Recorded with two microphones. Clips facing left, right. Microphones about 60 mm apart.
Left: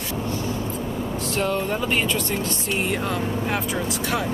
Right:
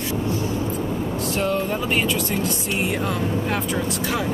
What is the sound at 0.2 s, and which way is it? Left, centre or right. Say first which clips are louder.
Vehicle: right 1 dB; centre.